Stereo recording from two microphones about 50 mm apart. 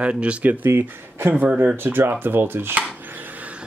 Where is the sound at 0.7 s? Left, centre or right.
Right.